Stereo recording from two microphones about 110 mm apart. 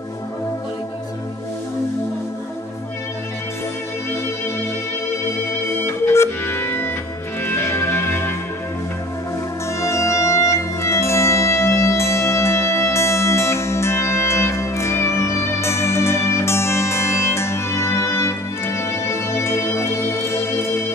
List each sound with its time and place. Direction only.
5.8 s music: 20° left (ahead or behind)
9.8 s music: 25° left (ahead or behind)